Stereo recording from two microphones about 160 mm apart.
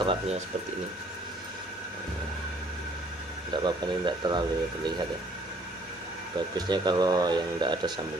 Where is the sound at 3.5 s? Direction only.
30° right (ahead or behind).